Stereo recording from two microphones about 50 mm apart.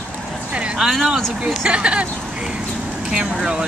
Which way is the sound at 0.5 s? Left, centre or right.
Right.